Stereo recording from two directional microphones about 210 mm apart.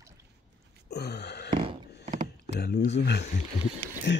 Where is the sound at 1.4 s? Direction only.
25° right (ahead or behind).